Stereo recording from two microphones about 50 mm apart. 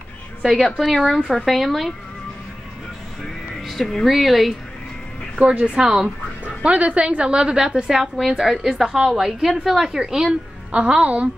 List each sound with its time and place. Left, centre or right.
0.4 s a woman's voice: centre
3.2 s music: centre
5.4 s a woman's voice: right
5.8 s a woman's voice: centre
6.4 s a woman's voice: right; by 10.3 s centre
10.7 s a woman's voice: right